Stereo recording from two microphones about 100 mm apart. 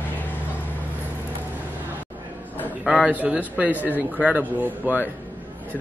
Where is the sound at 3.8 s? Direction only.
15° left (ahead or behind).